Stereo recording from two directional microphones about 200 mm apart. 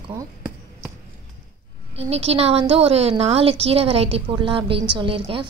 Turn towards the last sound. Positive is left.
turn(degrees=-25)  # may be behind; listen again after turning